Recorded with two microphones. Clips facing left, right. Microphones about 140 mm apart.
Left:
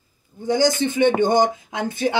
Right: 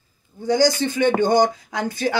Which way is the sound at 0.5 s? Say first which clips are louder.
Right 1 dB; 20° left (ahead or behind).